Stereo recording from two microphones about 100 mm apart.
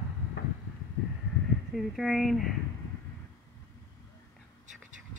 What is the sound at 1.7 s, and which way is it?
Speech, centre (ahead or behind).